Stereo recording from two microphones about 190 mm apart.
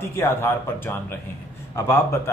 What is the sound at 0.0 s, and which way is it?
A man's voice, 15° left (ahead or behind).